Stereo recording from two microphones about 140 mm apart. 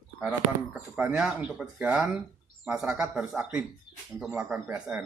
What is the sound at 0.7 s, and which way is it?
Speech, 10° right (ahead or behind).